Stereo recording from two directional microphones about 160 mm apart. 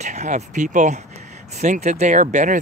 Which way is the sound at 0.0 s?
45° right (ahead or behind).